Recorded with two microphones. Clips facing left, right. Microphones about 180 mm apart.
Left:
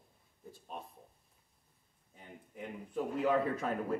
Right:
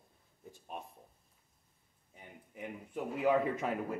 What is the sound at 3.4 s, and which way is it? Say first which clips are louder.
Speech: even; 15° right (ahead or behind).